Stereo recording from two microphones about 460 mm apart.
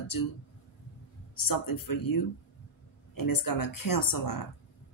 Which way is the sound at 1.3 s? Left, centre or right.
Left.